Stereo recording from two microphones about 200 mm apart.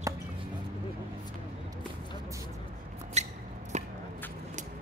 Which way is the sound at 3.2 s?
35° right (ahead or behind).